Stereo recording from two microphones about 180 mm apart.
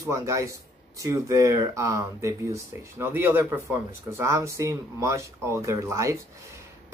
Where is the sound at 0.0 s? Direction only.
15° right (ahead or behind).